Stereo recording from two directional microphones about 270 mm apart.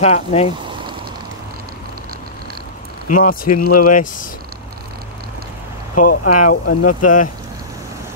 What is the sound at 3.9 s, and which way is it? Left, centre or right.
Speech, left.